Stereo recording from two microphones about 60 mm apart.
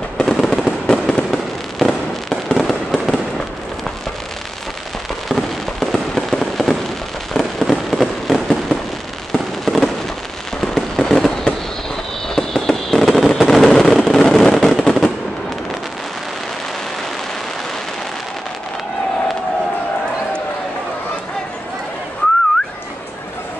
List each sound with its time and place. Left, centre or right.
0.2 s fireworks: centre
2.6 s fireworks: centre
5.3 s fireworks: centre
12.4 s fireworks: centre